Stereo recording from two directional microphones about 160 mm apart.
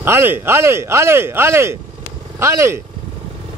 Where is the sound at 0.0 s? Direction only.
15° right (ahead or behind).